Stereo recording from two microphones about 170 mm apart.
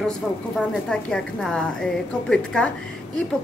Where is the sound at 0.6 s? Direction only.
5° left (ahead or behind).